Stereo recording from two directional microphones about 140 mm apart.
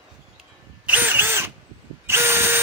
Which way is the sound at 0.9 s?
15° right (ahead or behind).